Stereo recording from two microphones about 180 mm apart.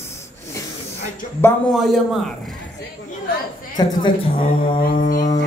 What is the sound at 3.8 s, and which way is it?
A man's voice, 25° left (ahead or behind).